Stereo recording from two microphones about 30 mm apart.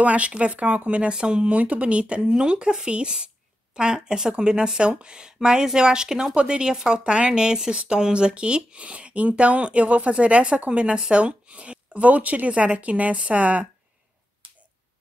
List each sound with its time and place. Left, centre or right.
0.0 s a woman's voice: right
1.1 s speech: right
1.6 s speech: right
12.4 s a woman's voice: right